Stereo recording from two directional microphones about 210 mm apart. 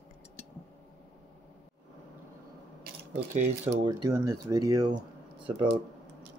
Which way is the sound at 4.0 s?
15° right (ahead or behind).